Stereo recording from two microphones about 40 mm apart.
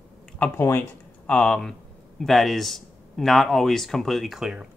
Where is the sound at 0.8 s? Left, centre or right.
Left.